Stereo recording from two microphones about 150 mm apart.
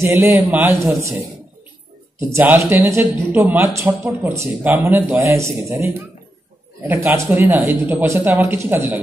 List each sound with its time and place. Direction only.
0.0 s speech: 15° right (ahead or behind)
2.1 s speech: 15° right (ahead or behind)